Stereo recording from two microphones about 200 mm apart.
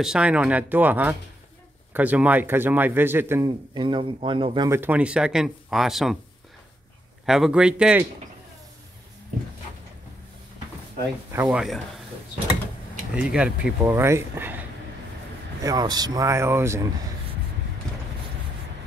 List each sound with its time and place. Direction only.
0.0 s a man's voice: 5° right (ahead or behind)
3.7 s speech: 25° right (ahead or behind)
4.6 s speech: 10° right (ahead or behind)
7.2 s speech: centre (ahead or behind)
11.3 s speech: 5° right (ahead or behind)
13.1 s a man's voice: 5° right (ahead or behind)
15.6 s a man's voice: 20° right (ahead or behind)